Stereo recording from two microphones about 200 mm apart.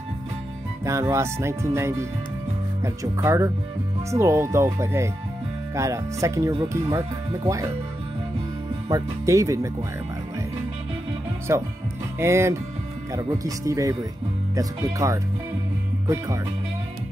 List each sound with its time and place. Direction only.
0.8 s speech: 15° right (ahead or behind)
8.8 s speech: 15° right (ahead or behind)
11.5 s speech: 15° right (ahead or behind)